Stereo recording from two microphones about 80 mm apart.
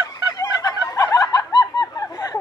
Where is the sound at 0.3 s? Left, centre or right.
Left.